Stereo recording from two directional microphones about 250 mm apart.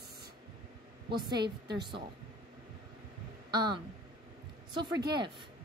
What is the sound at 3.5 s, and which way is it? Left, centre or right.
A woman's voice, centre.